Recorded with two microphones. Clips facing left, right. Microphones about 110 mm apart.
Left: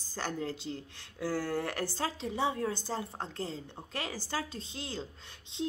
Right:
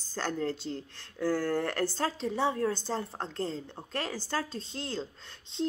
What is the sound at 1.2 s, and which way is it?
Speech, 50° right (ahead or behind).